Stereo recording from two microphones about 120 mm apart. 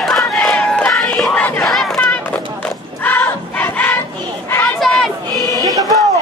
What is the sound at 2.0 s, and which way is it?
Crowd, 15° left (ahead or behind).